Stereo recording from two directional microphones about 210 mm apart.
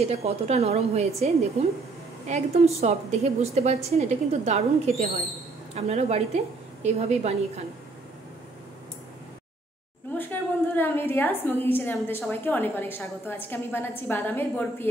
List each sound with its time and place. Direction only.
0.0 s a woman's voice: 30° right (ahead or behind)
10.1 s a woman's voice: 10° left (ahead or behind)